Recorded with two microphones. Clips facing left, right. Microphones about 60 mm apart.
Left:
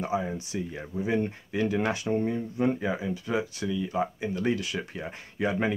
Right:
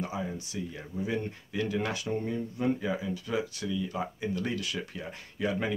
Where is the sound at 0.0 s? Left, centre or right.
Left.